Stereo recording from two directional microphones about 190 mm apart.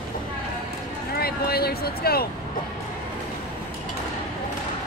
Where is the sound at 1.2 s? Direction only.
55° left (ahead or behind).